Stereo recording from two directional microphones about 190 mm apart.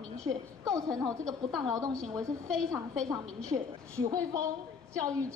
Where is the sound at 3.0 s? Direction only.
15° right (ahead or behind).